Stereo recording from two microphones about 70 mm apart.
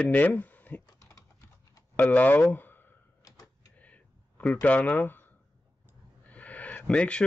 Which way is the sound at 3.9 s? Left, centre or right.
Left.